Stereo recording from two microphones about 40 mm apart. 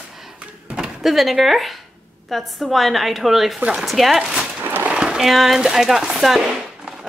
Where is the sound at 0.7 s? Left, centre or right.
Centre.